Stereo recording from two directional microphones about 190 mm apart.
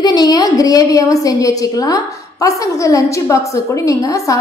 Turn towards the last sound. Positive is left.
turn(degrees=15)  # may be behind; listen again after turning